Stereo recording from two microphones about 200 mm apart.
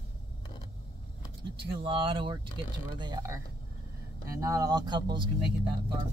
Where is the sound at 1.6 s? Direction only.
25° right (ahead or behind).